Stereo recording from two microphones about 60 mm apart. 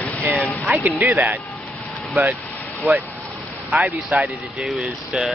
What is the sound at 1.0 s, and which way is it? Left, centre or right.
Speech, right.